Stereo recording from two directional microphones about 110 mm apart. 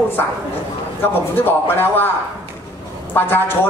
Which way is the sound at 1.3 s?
20° left (ahead or behind).